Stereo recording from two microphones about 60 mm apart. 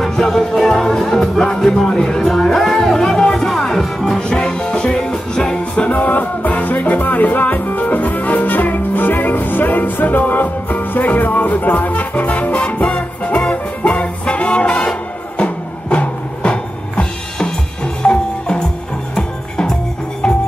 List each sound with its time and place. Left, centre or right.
0.0 s music: centre
4.2 s music: centre
5.9 s music: left
15.3 s music: left